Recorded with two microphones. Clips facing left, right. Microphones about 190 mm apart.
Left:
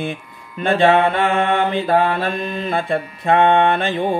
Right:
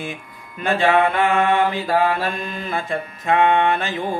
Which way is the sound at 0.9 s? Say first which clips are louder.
Left 2 dB; 30° left (ahead or behind).